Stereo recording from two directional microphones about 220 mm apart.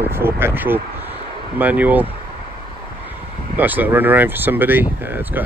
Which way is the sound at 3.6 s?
10° right (ahead or behind).